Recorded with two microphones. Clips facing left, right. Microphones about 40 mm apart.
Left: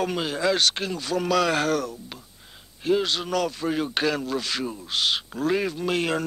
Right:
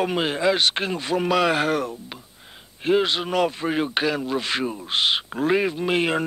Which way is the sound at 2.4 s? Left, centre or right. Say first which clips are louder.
Right 3 dB; right.